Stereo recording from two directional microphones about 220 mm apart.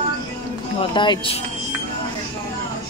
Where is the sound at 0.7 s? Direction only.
20° left (ahead or behind).